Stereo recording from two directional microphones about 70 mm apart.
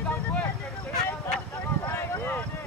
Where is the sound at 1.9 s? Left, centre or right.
Left.